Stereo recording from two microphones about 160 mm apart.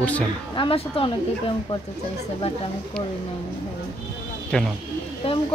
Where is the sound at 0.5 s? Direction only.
35° left (ahead or behind).